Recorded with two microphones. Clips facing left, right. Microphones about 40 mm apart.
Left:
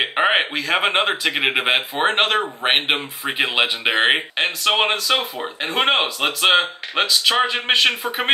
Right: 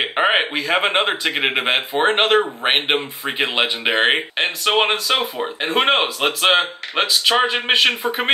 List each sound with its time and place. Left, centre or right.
0.0 s speech: centre